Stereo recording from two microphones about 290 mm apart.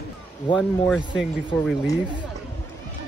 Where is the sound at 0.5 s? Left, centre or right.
Centre.